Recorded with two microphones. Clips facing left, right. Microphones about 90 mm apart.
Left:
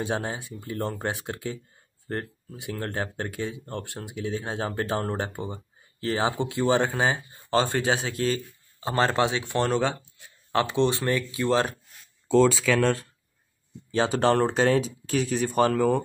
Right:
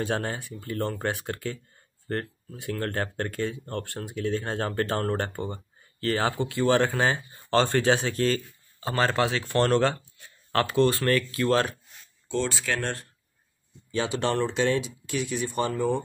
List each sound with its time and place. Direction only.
0.0 s speech: 15° left (ahead or behind)
8.8 s speech: 25° left (ahead or behind)
13.9 s speech: 40° left (ahead or behind)